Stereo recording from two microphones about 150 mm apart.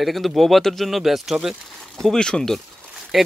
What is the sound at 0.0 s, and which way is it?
Speech, centre (ahead or behind).